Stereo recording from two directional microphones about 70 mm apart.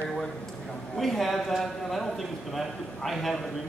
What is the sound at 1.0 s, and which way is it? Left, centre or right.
A woman's voice, centre.